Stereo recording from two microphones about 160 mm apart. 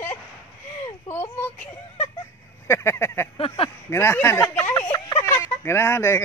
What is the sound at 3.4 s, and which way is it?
Speech, 35° left (ahead or behind).